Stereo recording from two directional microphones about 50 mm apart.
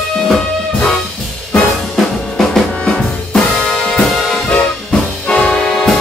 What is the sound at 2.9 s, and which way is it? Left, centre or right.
Music, centre.